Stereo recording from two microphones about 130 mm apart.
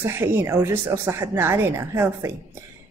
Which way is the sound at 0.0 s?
20° right (ahead or behind).